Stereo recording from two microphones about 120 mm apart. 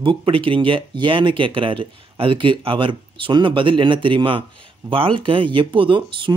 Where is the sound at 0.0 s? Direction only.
45° right (ahead or behind).